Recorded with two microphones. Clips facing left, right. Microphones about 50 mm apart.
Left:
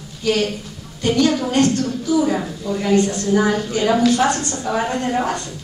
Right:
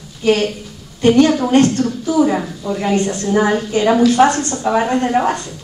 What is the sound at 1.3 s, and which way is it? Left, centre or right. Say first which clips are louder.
Speech: right 5 dB; right.